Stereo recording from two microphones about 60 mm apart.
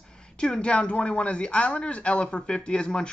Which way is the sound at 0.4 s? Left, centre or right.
Centre.